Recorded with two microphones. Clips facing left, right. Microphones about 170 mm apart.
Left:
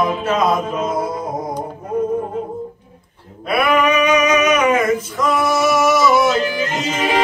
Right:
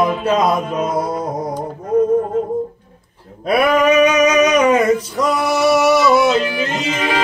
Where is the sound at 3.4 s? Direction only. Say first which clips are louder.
Right 3 dB; 40° right (ahead or behind); by 6.7 s 25° right (ahead or behind).